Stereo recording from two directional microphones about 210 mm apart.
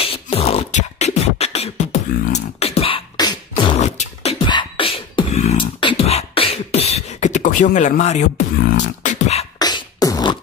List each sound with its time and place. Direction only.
0.0 s beatboxing: 25° left (ahead or behind)
3.7 s beatboxing: 35° left (ahead or behind)
9.6 s beatboxing: 20° left (ahead or behind)